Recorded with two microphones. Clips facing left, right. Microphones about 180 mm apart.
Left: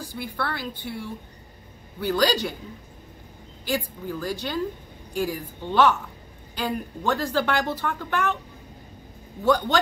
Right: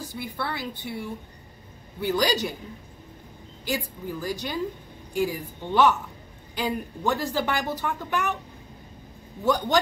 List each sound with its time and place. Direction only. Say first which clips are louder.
0.0 s a woman's voice: left 1 dB; 20° right (ahead or behind)
3.6 s a woman's voice: left 2 dB; 15° right (ahead or behind)
9.4 s a woman's voice: left 2 dB; 15° right (ahead or behind)